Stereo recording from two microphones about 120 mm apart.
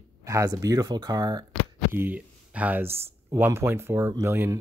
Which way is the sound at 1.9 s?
15° right (ahead or behind).